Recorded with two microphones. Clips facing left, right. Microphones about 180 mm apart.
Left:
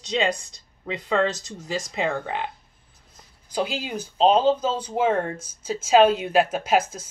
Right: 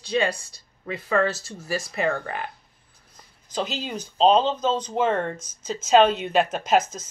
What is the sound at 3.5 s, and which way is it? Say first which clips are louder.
Speech: left 2 dB; 10° left (ahead or behind).